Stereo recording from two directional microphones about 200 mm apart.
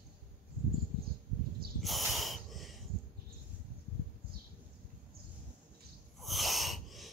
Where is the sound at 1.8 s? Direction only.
Centre (ahead or behind).